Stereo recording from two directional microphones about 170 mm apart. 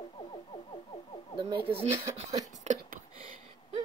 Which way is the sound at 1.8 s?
40° right (ahead or behind).